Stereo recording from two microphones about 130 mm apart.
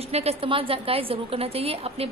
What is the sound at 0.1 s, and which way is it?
A woman's voice, 50° right (ahead or behind).